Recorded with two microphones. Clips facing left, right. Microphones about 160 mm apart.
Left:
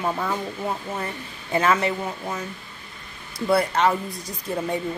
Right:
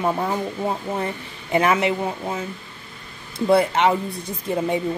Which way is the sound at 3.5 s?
25° right (ahead or behind).